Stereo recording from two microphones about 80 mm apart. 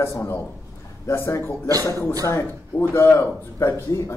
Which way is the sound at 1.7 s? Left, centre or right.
Right.